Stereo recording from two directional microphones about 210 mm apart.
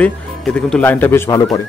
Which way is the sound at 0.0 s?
5° left (ahead or behind).